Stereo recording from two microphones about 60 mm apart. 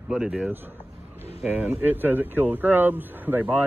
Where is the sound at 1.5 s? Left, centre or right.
Right.